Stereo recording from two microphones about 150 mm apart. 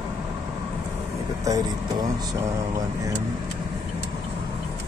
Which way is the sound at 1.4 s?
25° right (ahead or behind).